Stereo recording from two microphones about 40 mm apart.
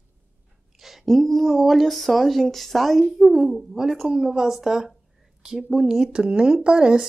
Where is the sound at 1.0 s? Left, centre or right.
Centre.